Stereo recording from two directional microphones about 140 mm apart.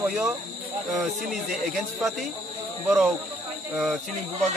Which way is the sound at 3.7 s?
5° right (ahead or behind).